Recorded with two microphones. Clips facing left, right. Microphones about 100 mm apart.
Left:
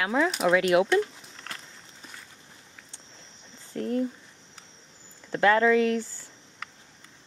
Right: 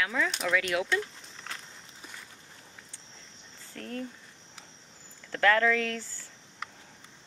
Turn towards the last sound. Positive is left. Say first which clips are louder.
# left 8 dB
turn(degrees=15)  # may be behind; listen again after turning